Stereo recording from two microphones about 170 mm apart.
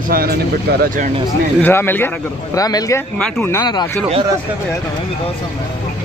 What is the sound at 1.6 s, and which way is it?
Speech, 10° left (ahead or behind).